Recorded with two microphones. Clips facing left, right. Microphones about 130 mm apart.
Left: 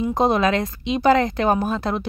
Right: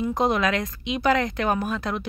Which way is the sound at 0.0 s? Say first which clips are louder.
Left 4 dB; 30° left (ahead or behind).